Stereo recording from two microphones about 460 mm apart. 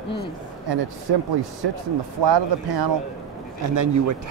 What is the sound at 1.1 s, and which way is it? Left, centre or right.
Speech, right.